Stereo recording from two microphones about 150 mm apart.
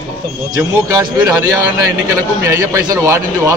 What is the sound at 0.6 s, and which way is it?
A man's voice, 20° right (ahead or behind).